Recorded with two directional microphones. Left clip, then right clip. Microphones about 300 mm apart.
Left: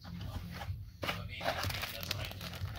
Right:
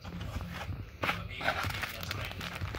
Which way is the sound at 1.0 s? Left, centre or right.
Centre.